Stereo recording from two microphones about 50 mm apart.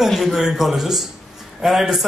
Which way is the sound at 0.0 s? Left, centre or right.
Centre.